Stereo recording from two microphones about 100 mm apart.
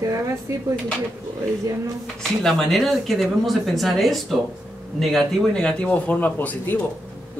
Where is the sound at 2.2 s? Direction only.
5° left (ahead or behind).